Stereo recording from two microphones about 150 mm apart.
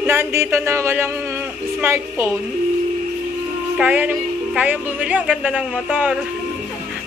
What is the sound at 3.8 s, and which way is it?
Speech, 10° right (ahead or behind).